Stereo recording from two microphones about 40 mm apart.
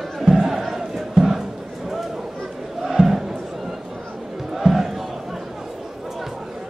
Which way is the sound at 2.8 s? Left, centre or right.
Centre.